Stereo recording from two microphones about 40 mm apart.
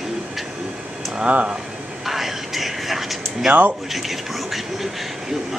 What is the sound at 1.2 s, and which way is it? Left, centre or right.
Speech, right.